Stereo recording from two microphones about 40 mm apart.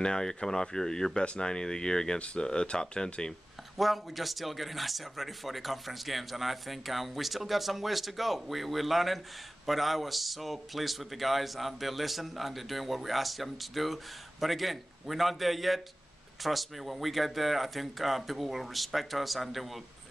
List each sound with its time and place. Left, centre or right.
0.0 s speech: centre
3.7 s a man's voice: centre